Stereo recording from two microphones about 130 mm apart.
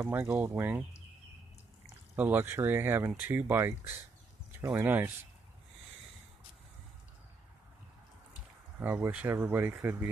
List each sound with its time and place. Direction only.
0.0 s speech: 15° right (ahead or behind)
2.1 s speech: 15° right (ahead or behind)
4.7 s speech: 15° right (ahead or behind)
8.7 s speech: 15° right (ahead or behind)